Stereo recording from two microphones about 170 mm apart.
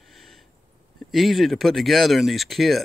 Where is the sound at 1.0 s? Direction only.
Centre (ahead or behind).